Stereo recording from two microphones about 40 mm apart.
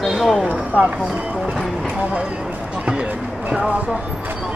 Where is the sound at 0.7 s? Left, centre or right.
Left.